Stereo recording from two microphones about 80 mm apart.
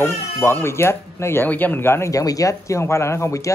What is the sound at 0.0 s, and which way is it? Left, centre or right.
A man's voice, left.